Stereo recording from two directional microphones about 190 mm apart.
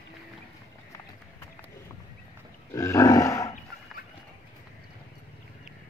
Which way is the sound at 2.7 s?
15° left (ahead or behind).